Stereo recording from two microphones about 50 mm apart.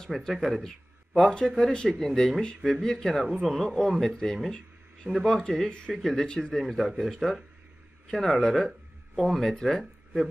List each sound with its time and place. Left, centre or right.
0.3 s speech: centre
6.6 s a man's voice: centre